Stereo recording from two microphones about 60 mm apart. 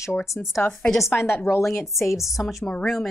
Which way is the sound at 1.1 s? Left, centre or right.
Left.